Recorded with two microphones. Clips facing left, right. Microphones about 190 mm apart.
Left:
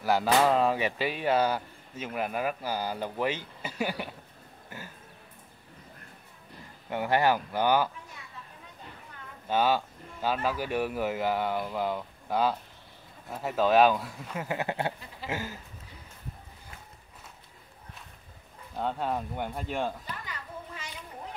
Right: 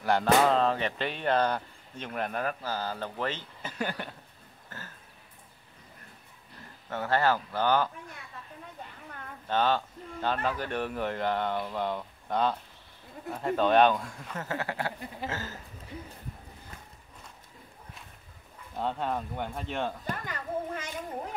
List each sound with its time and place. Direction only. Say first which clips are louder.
0.0 s speech: even; 5° left (ahead or behind)
4.6 s a sound: left 2 dB; 10° left (ahead or behind)
6.9 s speech: left 1 dB; 15° left (ahead or behind)
9.5 s speech: left 1 dB; 10° left (ahead or behind)
18.8 s speech: left 1 dB; 5° left (ahead or behind)
20.1 s a child's voice: right 6 dB; 50° right (ahead or behind)